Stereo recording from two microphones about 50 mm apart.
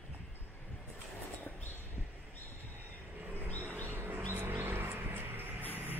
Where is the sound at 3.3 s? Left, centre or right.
Left.